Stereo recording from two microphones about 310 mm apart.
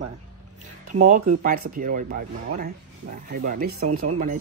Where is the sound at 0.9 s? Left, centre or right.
Right.